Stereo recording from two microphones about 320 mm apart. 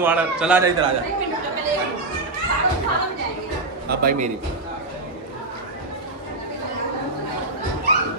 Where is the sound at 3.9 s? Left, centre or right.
Right.